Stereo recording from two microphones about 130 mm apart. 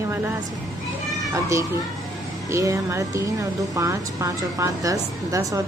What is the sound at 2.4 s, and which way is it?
Speech, 25° right (ahead or behind).